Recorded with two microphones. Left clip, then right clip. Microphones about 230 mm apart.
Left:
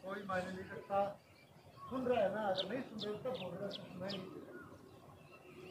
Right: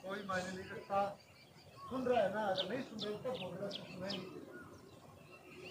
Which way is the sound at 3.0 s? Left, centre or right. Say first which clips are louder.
Left 1 dB; left.